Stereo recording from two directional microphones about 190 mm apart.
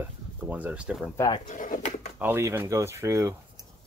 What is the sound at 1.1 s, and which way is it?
Speech, 20° left (ahead or behind).